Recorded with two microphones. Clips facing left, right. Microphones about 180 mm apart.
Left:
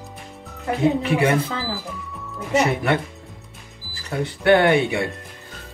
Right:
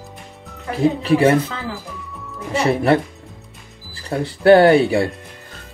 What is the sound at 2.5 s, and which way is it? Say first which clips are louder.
Speech: right 3 dB; 30° right (ahead or behind).